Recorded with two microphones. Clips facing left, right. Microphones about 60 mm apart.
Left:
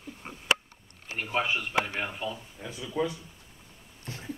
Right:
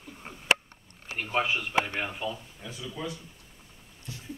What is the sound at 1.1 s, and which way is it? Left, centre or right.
A man's voice, centre.